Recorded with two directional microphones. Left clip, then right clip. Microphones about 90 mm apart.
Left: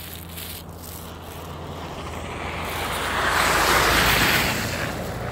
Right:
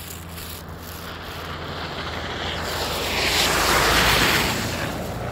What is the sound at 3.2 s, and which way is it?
Waves, 70° left (ahead or behind).